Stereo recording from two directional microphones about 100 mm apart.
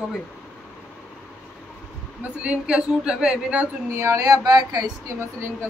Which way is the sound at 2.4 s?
10° right (ahead or behind).